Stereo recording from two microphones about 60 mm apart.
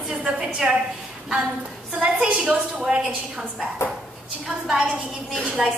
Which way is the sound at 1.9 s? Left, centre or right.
Centre.